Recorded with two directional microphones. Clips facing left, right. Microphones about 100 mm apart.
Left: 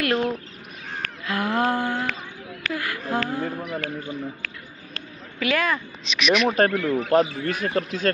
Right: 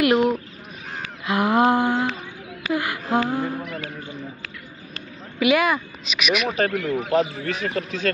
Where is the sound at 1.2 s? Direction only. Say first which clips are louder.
Right 5 dB; 20° right (ahead or behind).